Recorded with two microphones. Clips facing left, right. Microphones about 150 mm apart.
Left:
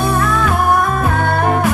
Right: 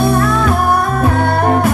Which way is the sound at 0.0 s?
35° right (ahead or behind).